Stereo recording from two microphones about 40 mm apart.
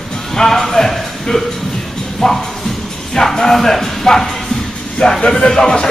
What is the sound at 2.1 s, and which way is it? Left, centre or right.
Music, centre.